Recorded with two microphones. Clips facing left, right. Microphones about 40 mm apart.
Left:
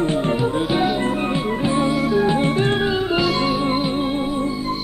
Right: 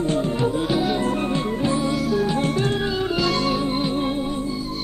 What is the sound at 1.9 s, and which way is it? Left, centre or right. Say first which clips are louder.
Music: left 4 dB; left.